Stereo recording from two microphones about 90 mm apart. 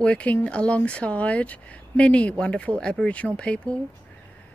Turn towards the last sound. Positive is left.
turn(degrees=15)  # may be behind; listen again after turning